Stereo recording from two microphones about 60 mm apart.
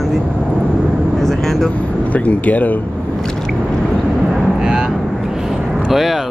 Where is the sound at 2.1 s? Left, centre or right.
Left.